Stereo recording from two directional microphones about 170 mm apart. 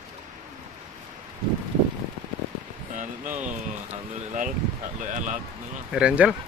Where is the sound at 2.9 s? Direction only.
45° right (ahead or behind).